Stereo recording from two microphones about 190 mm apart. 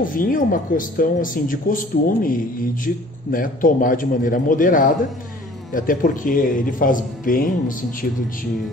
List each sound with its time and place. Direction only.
0.0 s speech: 45° left (ahead or behind)